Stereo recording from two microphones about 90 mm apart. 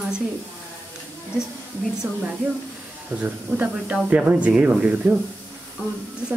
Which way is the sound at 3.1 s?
15° right (ahead or behind).